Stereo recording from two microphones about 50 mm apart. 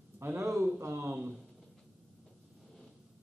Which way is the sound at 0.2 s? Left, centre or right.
Right.